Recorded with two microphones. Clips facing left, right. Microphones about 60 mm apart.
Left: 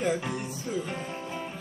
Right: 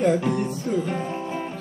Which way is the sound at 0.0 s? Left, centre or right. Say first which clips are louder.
Right 8 dB; centre.